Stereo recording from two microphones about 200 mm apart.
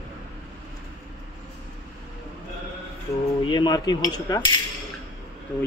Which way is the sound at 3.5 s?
20° left (ahead or behind).